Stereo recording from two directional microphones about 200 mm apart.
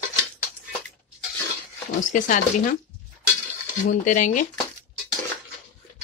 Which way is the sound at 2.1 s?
40° left (ahead or behind).